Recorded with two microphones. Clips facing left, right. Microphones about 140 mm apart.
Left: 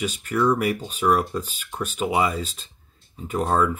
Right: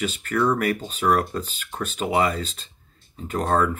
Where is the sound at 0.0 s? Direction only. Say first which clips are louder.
Left 1 dB; 10° left (ahead or behind).